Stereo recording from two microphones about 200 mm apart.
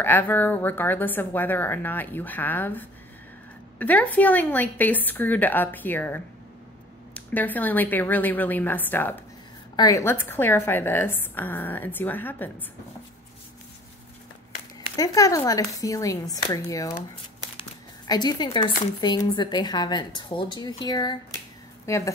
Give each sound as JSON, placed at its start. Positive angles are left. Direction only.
{"t": 0.0, "sound": "a woman's voice", "side_deg": 10}
{"t": 15.0, "sound": "a woman's voice", "side_deg": 15}
{"t": 17.6, "sound": "crumpling", "side_deg": 20}
{"t": 18.9, "sound": "a woman's voice", "side_deg": 20}